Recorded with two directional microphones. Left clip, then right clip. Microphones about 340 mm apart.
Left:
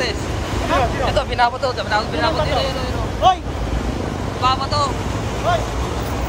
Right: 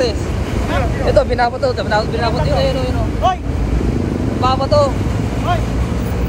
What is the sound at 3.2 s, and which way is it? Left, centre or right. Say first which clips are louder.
Vehicle: left 2 dB; left.